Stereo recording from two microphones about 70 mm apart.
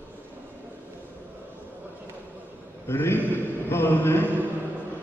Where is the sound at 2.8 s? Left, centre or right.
Left.